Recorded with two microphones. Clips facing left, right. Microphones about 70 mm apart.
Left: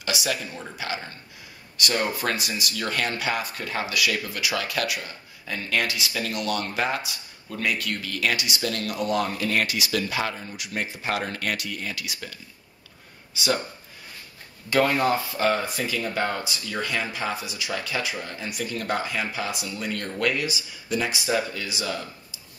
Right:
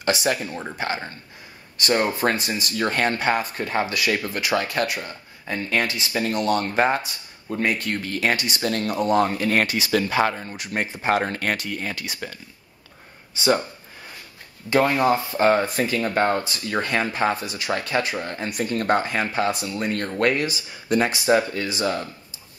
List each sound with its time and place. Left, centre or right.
0.0 s speech: right
14.7 s speech: right